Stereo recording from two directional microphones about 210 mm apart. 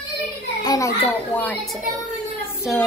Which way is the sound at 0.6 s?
15° left (ahead or behind).